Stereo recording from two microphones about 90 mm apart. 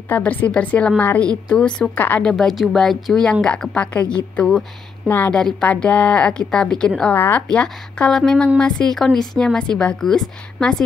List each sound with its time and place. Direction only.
0.1 s a woman's voice: 20° left (ahead or behind)
2.3 s a woman's voice: centre (ahead or behind)
5.0 s a woman's voice: 20° left (ahead or behind)
7.2 s a woman's voice: 20° left (ahead or behind)
7.4 s a woman's voice: 10° left (ahead or behind)